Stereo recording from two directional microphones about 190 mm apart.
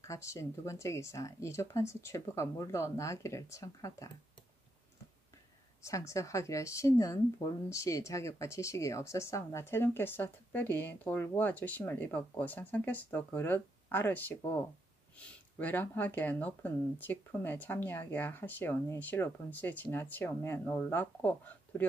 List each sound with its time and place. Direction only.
0.0 s speech: 15° left (ahead or behind)
5.9 s speech: 15° left (ahead or behind)